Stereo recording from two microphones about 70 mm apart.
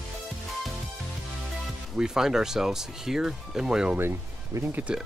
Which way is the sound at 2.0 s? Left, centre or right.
Centre.